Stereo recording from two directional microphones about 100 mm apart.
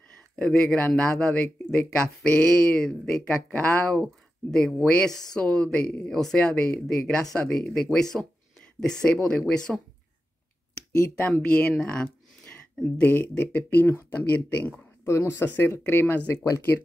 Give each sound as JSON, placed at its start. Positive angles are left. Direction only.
{"t": 0.4, "sound": "speech", "side_deg": 10}
{"t": 11.2, "sound": "speech", "side_deg": 10}
{"t": 11.9, "sound": "a sound", "side_deg": 5}
{"t": 13.0, "sound": "speech", "side_deg": 20}